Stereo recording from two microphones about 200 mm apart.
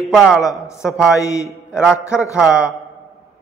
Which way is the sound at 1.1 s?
15° left (ahead or behind).